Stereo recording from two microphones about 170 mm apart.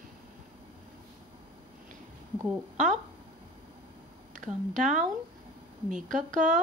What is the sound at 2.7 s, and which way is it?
Speech, 45° right (ahead or behind).